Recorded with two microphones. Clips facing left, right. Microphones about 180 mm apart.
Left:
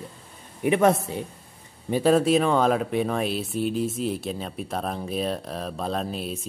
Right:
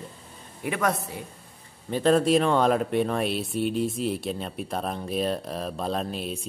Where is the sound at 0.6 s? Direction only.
25° left (ahead or behind).